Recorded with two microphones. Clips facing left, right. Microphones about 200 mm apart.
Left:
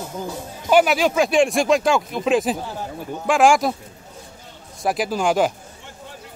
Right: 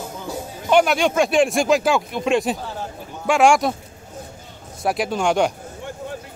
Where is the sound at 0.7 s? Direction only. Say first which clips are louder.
Even; 5° left (ahead or behind).